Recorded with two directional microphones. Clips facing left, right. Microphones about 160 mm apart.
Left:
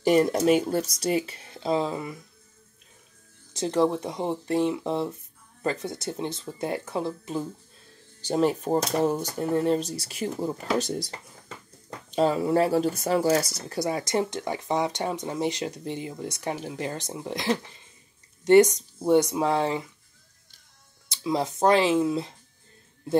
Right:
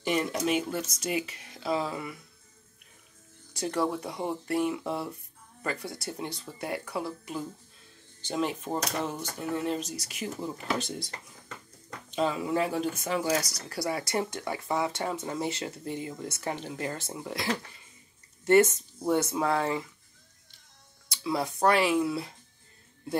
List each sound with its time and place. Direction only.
0.0 s speech: 40° left (ahead or behind)
3.5 s speech: 20° left (ahead or behind)
8.2 s speech: 35° left (ahead or behind)
12.2 s speech: 35° left (ahead or behind); by 19.8 s 20° left (ahead or behind)
21.1 s speech: 20° left (ahead or behind)